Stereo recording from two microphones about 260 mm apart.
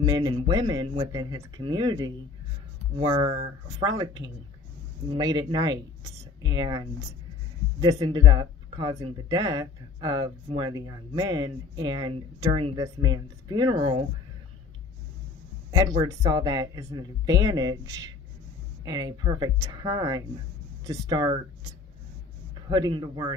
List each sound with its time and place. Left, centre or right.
0.0 s speech: centre
5.1 s speech: centre
7.8 s speech: centre
15.7 s speech: centre
22.7 s speech: centre